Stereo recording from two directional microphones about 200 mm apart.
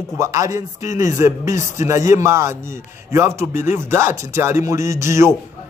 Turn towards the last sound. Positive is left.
turn(degrees=-15)  # may be behind; listen again after turning